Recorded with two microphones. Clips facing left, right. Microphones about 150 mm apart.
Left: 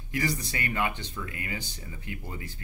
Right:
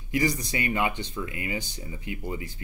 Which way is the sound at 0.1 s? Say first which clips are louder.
Right 4 dB; 15° right (ahead or behind).